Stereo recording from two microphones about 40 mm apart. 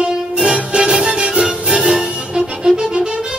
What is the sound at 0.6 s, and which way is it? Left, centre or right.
Music, right.